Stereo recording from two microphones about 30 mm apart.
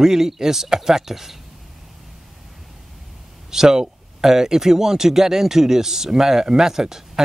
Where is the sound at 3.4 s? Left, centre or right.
Centre.